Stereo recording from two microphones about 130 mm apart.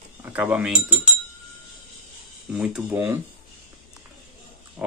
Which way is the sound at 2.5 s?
10° right (ahead or behind).